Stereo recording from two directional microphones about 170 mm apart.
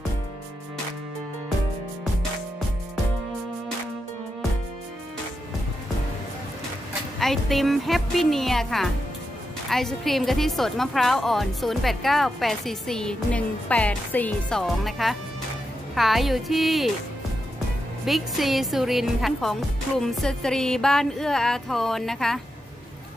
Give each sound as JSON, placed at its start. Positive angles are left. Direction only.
{"t": 7.2, "sound": "speech", "side_deg": 0}
{"t": 18.0, "sound": "speech", "side_deg": 0}